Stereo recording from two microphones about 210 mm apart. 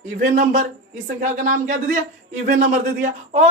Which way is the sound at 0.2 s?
40° right (ahead or behind).